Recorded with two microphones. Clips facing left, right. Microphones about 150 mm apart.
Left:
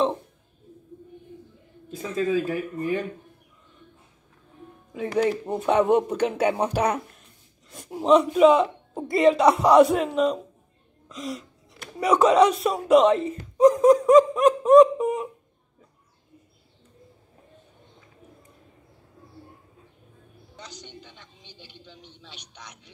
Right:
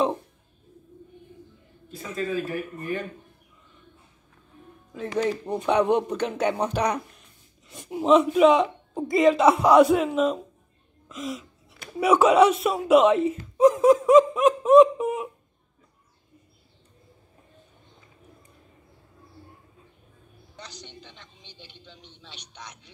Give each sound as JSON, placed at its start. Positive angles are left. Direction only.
{"t": 2.5, "sound": "speech", "side_deg": 25}
{"t": 4.9, "sound": "speech", "side_deg": 10}
{"t": 21.2, "sound": "a sound", "side_deg": 10}